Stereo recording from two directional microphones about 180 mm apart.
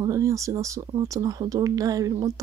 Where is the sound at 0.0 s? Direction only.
20° right (ahead or behind).